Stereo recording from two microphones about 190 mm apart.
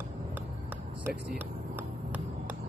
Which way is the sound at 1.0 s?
10° right (ahead or behind).